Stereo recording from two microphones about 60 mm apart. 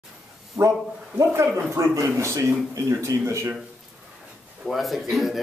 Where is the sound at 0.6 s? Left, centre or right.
Right.